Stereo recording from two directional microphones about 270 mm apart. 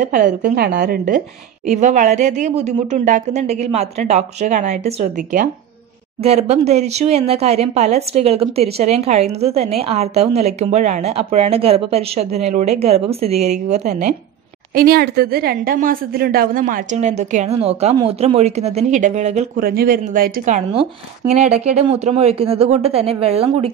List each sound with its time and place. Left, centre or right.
0.0 s a woman's voice: right
14.8 s speech: right